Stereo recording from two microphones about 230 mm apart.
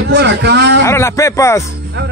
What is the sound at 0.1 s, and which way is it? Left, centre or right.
Speech, right.